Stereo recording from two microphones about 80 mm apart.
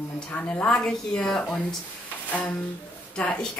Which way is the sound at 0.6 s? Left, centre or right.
Centre.